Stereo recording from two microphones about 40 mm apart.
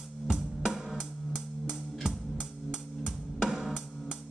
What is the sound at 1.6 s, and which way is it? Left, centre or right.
Music, centre.